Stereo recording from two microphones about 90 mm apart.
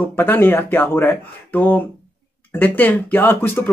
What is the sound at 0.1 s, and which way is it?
Speech, 20° left (ahead or behind).